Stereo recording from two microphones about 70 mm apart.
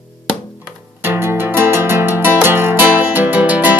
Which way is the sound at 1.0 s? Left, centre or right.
Right.